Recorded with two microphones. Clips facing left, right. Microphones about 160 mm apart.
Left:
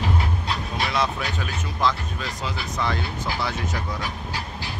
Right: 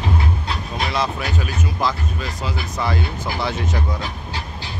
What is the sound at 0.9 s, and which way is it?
Speech, 5° right (ahead or behind).